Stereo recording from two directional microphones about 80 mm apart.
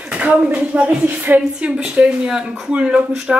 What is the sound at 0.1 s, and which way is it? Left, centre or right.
A woman's voice, centre.